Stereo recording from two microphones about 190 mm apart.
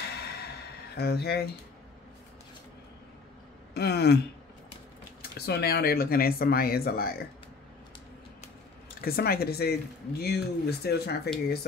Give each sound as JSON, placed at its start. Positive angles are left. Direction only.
{"t": 0.0, "sound": "a sound", "side_deg": 60}
{"t": 3.7, "sound": "speech", "side_deg": 60}
{"t": 5.4, "sound": "speech", "side_deg": 55}
{"t": 9.0, "sound": "speech", "side_deg": 55}